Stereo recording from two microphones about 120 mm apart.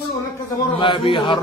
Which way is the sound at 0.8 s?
45° left (ahead or behind).